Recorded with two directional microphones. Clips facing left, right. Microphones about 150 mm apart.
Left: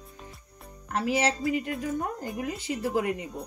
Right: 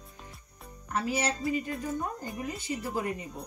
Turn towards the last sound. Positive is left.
turn(degrees=80)